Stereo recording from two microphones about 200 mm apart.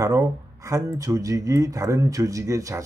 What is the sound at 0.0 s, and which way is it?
Speech, 15° right (ahead or behind).